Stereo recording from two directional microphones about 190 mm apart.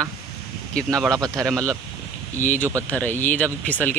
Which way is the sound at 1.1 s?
20° right (ahead or behind).